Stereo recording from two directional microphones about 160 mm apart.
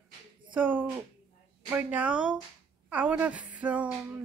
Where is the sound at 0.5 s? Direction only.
10° right (ahead or behind).